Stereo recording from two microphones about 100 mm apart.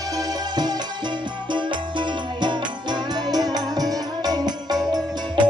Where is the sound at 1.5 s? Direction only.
50° right (ahead or behind).